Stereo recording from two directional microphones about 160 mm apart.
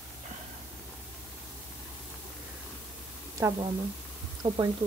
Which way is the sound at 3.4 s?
20° right (ahead or behind).